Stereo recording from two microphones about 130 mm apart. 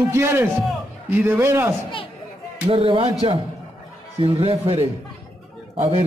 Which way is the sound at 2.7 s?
45° right (ahead or behind).